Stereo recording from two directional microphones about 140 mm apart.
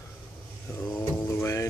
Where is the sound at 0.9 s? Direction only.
15° left (ahead or behind).